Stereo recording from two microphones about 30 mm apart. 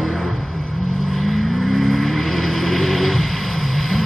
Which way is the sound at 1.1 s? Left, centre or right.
Centre.